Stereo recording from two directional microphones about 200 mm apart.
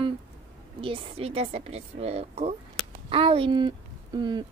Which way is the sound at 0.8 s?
25° right (ahead or behind).